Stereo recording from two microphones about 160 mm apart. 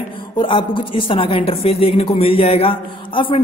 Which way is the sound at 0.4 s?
30° left (ahead or behind).